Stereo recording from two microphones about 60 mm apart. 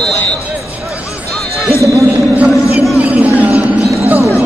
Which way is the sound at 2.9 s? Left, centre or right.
Right.